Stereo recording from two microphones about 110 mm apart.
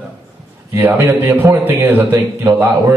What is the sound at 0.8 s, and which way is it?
A man's voice, 20° right (ahead or behind).